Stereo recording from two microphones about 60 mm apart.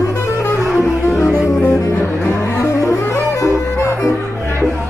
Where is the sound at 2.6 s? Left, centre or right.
Left.